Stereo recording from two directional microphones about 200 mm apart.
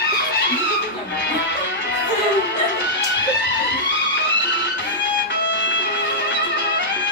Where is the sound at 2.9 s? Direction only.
60° left (ahead or behind).